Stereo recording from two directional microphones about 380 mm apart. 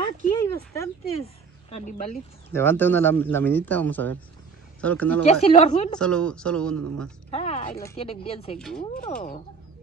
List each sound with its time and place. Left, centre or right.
0.4 s speech: centre
2.5 s speech: centre
5.2 s a woman's voice: centre
5.9 s speech: centre
7.2 s speech: centre
8.5 s speech: centre
8.8 s a woman's voice: centre